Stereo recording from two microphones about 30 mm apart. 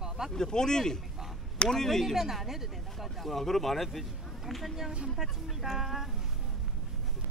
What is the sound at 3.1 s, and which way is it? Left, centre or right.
Speech, centre.